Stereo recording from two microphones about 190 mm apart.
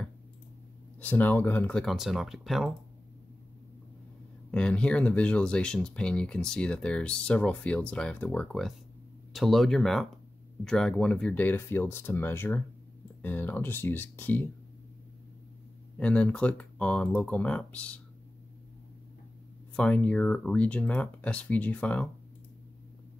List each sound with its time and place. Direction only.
1.0 s speech: 10° left (ahead or behind)
4.5 s speech: 5° left (ahead or behind)
16.0 s speech: 5° left (ahead or behind)
19.7 s speech: 5° left (ahead or behind)